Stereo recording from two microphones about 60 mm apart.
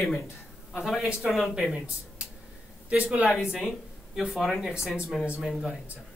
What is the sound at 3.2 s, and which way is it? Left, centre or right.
Speech, left.